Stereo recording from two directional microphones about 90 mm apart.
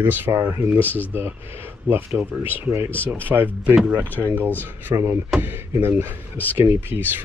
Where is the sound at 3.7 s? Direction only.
5° right (ahead or behind).